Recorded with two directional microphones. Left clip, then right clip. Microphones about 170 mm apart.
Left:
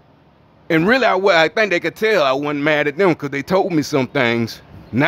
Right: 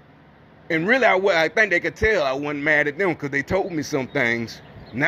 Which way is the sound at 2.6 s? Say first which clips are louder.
Left 2 dB; 20° left (ahead or behind).